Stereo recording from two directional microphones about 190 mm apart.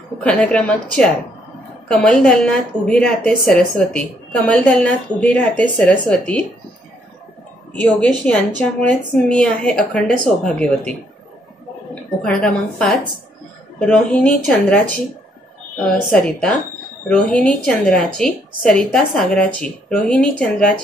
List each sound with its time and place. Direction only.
0.2 s a woman's voice: 5° left (ahead or behind)
8.5 s a woman's voice: 5° left (ahead or behind)
11.9 s a woman's voice: 5° left (ahead or behind)
15.8 s a woman's voice: 5° left (ahead or behind)